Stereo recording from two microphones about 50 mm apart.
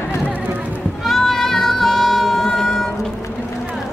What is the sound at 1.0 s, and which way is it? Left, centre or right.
Music, centre.